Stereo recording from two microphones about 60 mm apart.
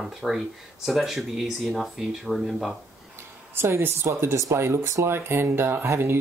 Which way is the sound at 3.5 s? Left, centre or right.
Right.